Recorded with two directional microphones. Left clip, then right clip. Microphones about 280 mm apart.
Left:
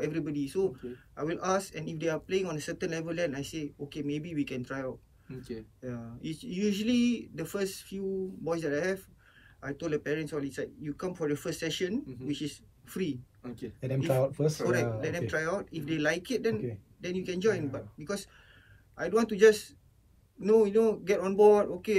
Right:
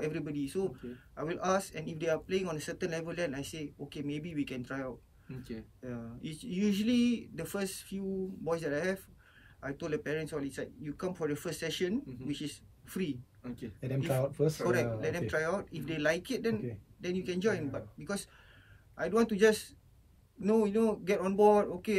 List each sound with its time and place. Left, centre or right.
0.0 s a man's voice: centre
13.4 s speech: left
15.0 s speech: centre